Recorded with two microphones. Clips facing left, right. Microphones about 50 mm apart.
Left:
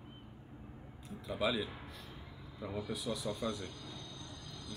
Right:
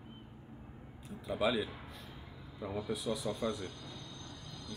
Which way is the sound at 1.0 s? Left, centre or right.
Centre.